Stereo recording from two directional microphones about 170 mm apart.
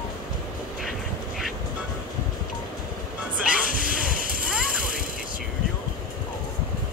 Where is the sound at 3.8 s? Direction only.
10° right (ahead or behind).